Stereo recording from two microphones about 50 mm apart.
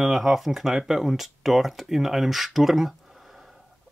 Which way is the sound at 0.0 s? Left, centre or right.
Centre.